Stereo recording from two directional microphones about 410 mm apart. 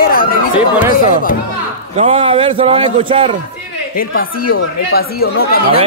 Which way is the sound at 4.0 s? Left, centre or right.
Left.